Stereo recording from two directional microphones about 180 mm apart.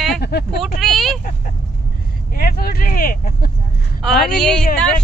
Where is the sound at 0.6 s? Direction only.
Centre (ahead or behind).